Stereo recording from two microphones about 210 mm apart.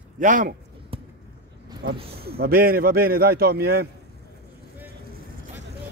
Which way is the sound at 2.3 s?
45° right (ahead or behind).